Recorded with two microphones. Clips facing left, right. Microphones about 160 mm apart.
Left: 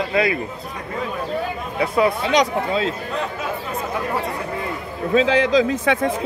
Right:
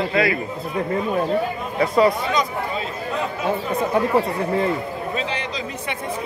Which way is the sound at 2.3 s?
90° left.